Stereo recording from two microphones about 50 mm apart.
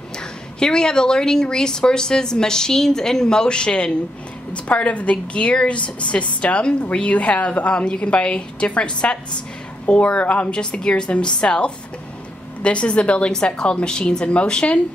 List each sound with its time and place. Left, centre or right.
0.2 s a woman's voice: centre